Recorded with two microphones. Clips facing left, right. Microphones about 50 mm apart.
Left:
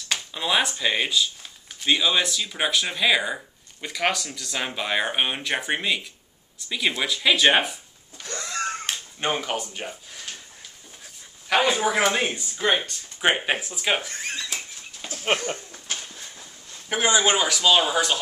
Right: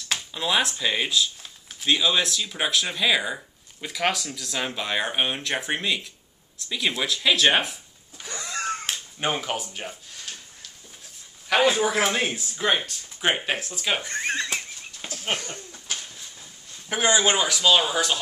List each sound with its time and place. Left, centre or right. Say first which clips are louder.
0.1 s speech: left 1 dB; centre
8.2 s a sound: left 2 dB; centre
11.4 s speech: right 1 dB; centre
14.0 s speech: right 5 dB; right
15.0 s a sound: left 4 dB; left
17.2 s speech: left 1 dB; centre